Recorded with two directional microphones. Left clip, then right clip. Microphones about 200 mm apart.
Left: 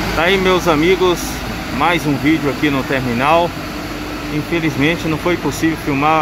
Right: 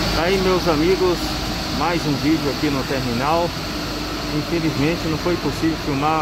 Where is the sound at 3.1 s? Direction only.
15° left (ahead or behind).